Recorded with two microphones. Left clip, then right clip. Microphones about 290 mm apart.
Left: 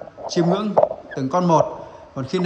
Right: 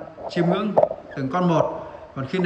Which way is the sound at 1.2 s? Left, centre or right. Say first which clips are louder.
Left 4 dB; centre.